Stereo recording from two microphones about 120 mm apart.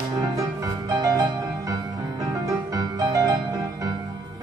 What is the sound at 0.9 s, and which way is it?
Music, 30° right (ahead or behind).